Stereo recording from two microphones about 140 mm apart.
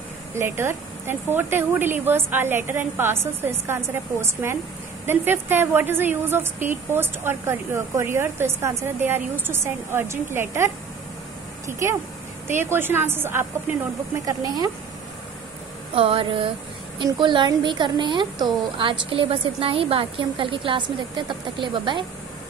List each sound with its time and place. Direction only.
0.4 s a woman's voice: 15° right (ahead or behind)
15.9 s a woman's voice: 40° right (ahead or behind)